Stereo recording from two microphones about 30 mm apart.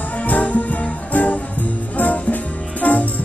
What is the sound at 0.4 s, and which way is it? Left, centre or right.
Music, left.